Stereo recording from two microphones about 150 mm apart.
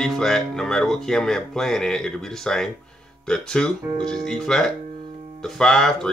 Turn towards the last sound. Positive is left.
turn(degrees=5)  # may be behind; listen again after turning